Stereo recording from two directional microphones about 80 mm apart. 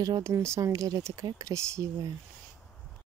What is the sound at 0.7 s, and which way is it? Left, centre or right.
Speech, right.